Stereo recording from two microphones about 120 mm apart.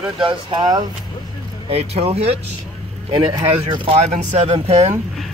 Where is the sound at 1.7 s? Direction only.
55° right (ahead or behind).